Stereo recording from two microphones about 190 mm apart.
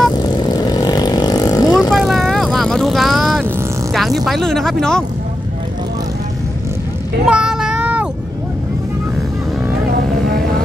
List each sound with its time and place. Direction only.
0.1 s vehicle: 20° left (ahead or behind)
1.9 s vehicle: centre (ahead or behind)
7.2 s child singing: 5° right (ahead or behind)